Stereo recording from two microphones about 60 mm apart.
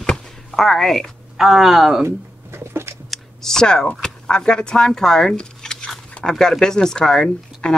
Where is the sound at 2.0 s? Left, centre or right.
Right.